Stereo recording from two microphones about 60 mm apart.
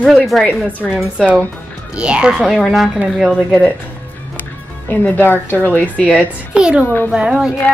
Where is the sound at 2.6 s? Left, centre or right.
Centre.